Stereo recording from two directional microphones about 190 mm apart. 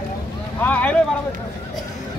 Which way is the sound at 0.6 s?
10° left (ahead or behind).